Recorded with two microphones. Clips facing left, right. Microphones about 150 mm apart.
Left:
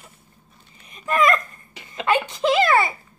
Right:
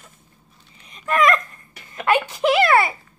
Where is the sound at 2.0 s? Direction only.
10° right (ahead or behind).